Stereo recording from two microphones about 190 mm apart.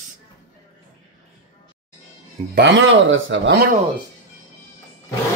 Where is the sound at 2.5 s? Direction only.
70° right (ahead or behind).